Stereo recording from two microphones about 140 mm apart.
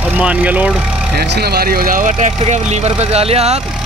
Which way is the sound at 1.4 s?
90° right.